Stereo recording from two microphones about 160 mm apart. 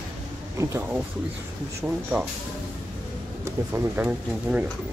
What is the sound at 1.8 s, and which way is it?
Speech, 5° right (ahead or behind).